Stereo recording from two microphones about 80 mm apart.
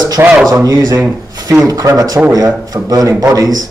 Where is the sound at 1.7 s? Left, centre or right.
Right.